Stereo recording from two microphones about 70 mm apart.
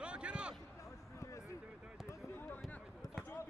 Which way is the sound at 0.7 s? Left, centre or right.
Left.